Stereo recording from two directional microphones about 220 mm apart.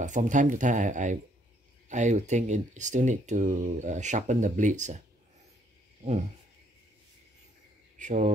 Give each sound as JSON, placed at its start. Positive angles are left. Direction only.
{"t": 0.0, "sound": "speech", "side_deg": -35}
{"t": 8.0, "sound": "speech", "side_deg": -35}